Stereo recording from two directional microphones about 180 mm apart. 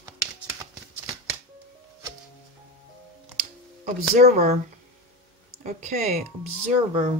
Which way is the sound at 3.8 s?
40° right (ahead or behind).